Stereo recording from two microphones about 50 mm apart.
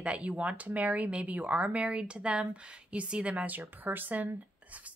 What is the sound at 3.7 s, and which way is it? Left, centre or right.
Speech, right.